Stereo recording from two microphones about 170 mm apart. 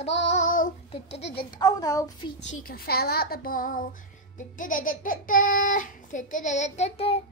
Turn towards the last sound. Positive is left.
turn(degrees=35)  # may be behind; listen again after turning